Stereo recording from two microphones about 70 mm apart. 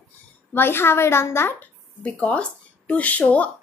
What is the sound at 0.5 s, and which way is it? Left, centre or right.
A woman's voice, left.